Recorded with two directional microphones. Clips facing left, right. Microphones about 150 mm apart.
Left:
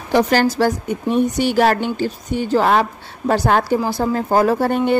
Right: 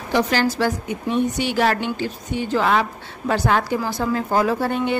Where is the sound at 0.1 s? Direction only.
45° left (ahead or behind).